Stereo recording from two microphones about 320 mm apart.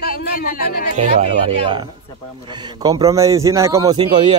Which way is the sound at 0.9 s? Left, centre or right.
Centre.